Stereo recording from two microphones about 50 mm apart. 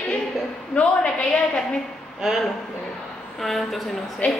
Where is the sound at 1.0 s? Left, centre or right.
Left.